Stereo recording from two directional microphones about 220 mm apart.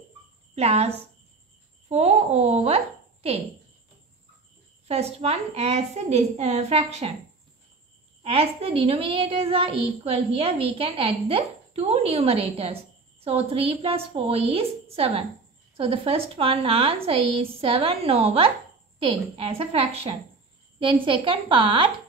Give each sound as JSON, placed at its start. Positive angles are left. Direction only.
{"t": 0.6, "sound": "a woman's voice", "side_deg": -30}
{"t": 4.8, "sound": "a woman's voice", "side_deg": -30}
{"t": 8.2, "sound": "a woman's voice", "side_deg": -25}